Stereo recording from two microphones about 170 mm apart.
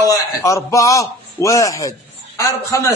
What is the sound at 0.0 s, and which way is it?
A man's voice, 20° left (ahead or behind).